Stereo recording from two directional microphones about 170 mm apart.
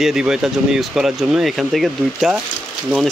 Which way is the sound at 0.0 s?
5° right (ahead or behind).